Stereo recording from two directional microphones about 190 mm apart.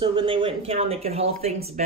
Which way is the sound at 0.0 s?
25° right (ahead or behind).